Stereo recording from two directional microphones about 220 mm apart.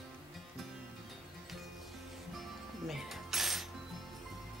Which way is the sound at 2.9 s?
Centre (ahead or behind).